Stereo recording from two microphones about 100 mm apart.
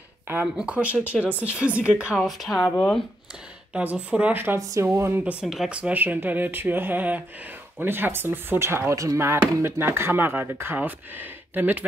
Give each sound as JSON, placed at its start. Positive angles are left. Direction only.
{"t": 0.6, "sound": "speech", "side_deg": -10}
{"t": 2.1, "sound": "speech", "side_deg": 0}
{"t": 3.7, "sound": "speech", "side_deg": -15}
{"t": 4.6, "sound": "speech", "side_deg": -35}
{"t": 5.4, "sound": "speech", "side_deg": -5}